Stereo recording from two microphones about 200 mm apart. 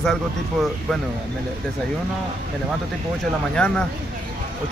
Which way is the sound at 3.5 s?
5° left (ahead or behind).